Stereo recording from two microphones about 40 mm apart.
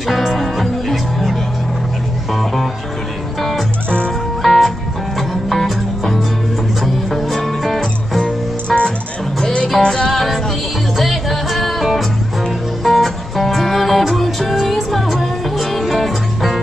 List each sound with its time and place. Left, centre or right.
0.1 s music: centre
2.3 s music: centre